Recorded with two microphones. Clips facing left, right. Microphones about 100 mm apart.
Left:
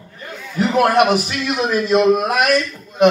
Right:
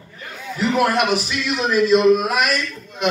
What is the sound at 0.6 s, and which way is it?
A man's voice, 45° left (ahead or behind).